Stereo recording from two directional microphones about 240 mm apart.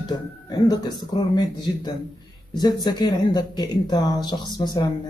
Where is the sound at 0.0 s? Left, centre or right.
Centre.